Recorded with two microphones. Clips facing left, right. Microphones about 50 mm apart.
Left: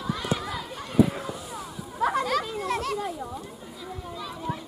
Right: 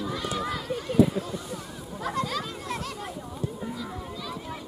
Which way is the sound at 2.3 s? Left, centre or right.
Left.